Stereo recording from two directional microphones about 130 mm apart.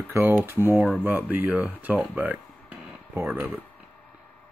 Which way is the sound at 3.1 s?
15° right (ahead or behind).